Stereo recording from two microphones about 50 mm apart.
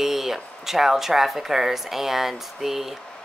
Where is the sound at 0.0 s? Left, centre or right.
Centre.